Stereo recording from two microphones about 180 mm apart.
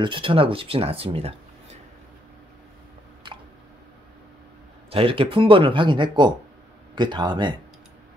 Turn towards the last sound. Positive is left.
turn(degrees=-25)  # may be behind; listen again after turning